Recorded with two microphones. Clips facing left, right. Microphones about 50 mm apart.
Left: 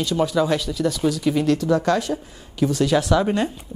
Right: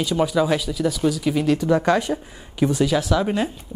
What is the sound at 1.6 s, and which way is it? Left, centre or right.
Speech, centre.